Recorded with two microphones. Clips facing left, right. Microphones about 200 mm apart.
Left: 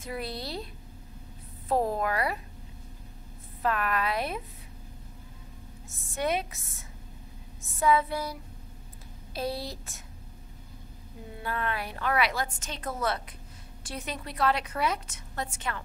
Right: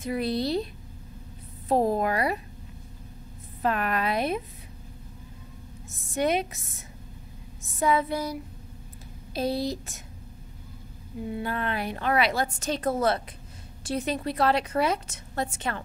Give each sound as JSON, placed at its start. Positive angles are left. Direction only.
{"t": 0.0, "sound": "a woman's voice", "side_deg": -20}
{"t": 1.7, "sound": "a woman's voice", "side_deg": -20}
{"t": 3.6, "sound": "a woman's voice", "side_deg": -25}
{"t": 6.1, "sound": "a woman's voice", "side_deg": -20}
{"t": 7.8, "sound": "a woman's voice", "side_deg": -20}
{"t": 11.4, "sound": "a woman's voice", "side_deg": -25}